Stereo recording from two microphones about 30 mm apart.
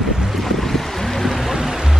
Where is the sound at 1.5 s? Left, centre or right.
Centre.